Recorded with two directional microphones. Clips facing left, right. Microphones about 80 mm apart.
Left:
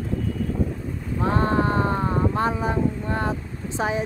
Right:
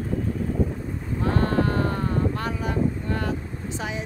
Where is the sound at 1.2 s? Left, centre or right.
Left.